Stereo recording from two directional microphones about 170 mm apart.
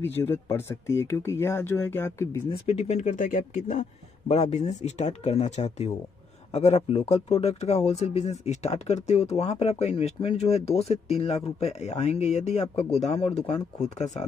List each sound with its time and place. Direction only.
0.0 s speech: 15° left (ahead or behind)
2.6 s speech: 40° left (ahead or behind)